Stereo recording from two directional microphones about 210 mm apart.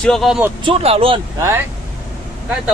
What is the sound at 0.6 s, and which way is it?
Speech, 30° right (ahead or behind).